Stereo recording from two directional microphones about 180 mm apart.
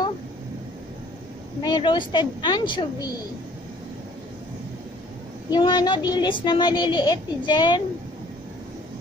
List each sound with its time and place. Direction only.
1.6 s speech: 25° left (ahead or behind)
5.5 s speech: 25° left (ahead or behind)